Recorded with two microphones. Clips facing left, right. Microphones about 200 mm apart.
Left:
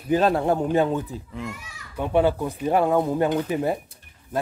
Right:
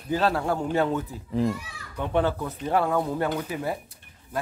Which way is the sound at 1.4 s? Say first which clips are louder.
Right 10 dB; 35° right (ahead or behind).